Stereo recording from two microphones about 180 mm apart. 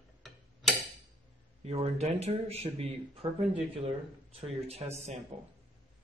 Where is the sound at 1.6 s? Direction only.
35° right (ahead or behind).